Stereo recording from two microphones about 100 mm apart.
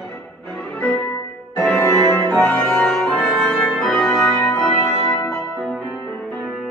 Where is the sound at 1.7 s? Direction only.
25° left (ahead or behind).